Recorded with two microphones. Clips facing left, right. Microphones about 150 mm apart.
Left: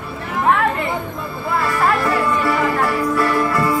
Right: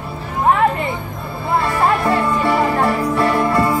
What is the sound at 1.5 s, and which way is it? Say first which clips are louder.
Music: right 2 dB; 25° right (ahead or behind).